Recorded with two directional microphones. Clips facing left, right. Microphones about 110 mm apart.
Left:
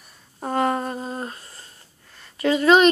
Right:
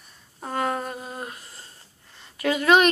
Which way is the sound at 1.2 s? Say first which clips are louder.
Left 3 dB; 10° right (ahead or behind).